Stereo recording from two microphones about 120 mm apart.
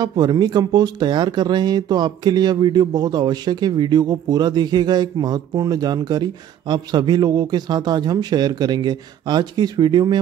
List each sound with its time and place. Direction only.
0.0 s speech: 35° right (ahead or behind)